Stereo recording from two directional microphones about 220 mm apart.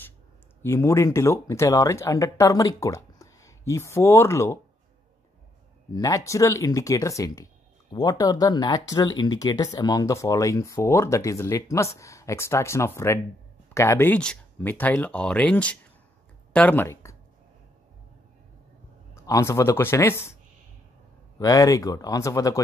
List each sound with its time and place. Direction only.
0.6 s speech: 10° left (ahead or behind)
5.9 s speech: 15° left (ahead or behind)
19.2 s speech: 15° left (ahead or behind)
21.4 s speech: 15° left (ahead or behind)